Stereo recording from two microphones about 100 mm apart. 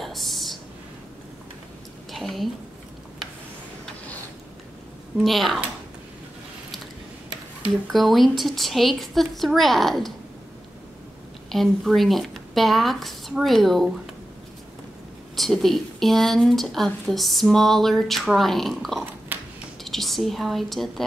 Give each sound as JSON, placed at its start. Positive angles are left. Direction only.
{"t": 0.0, "sound": "a sound", "side_deg": 0}
{"t": 2.1, "sound": "a woman's voice", "side_deg": 0}
{"t": 5.2, "sound": "speech", "side_deg": 0}
{"t": 7.9, "sound": "speech", "side_deg": 0}
{"t": 11.4, "sound": "speech", "side_deg": 0}
{"t": 15.3, "sound": "speech", "side_deg": 0}
{"t": 19.3, "sound": "a sound", "side_deg": -20}
{"t": 19.8, "sound": "a woman's voice", "side_deg": 0}